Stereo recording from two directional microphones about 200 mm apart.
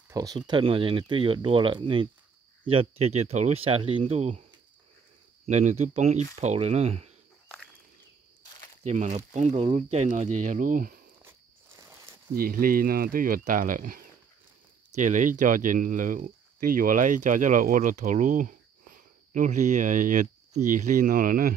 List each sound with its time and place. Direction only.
0.1 s speech: 20° right (ahead or behind)
5.5 s speech: 35° right (ahead or behind)
8.8 s speech: 35° right (ahead or behind)
12.4 s speech: 45° right (ahead or behind)